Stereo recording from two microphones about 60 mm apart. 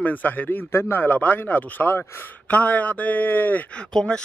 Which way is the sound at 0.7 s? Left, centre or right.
Left.